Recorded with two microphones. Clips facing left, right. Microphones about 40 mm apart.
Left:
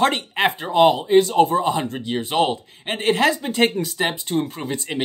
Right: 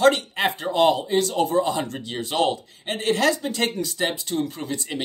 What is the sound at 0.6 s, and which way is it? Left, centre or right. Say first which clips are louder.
Speech: left 3 dB; centre.